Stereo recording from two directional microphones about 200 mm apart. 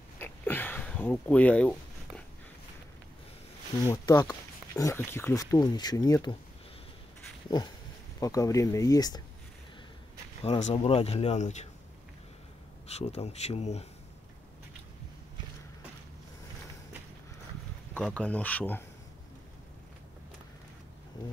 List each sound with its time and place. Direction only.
0.2 s a sound: 10° left (ahead or behind)
3.8 s speech: 20° left (ahead or behind)
8.2 s speech: 15° left (ahead or behind)
10.4 s speech: 30° left (ahead or behind)
12.9 s speech: 30° left (ahead or behind)
17.9 s speech: 5° left (ahead or behind)